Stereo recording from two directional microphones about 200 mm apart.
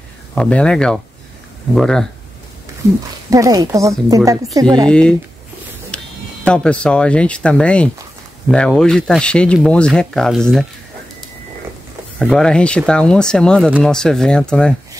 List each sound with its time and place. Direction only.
0.3 s speech: 5° left (ahead or behind)
3.3 s a woman's voice: 15° right (ahead or behind)
4.8 s speech: 5° left (ahead or behind)
5.9 s music: 5° left (ahead or behind)
6.4 s speech: 5° left (ahead or behind)
12.2 s speech: 5° left (ahead or behind)